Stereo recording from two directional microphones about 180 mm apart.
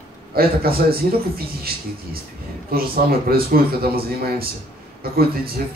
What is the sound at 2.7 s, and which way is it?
Speech, 55° right (ahead or behind).